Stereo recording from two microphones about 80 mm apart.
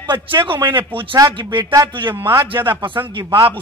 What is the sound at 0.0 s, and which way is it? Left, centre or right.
Speech, right.